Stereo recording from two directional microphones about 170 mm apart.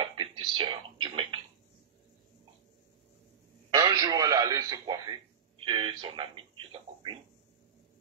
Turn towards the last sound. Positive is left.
turn(degrees=-30)  # may be behind; listen again after turning